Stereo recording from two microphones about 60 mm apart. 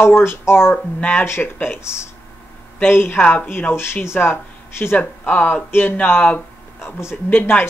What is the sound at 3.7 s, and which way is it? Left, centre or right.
Speech, left.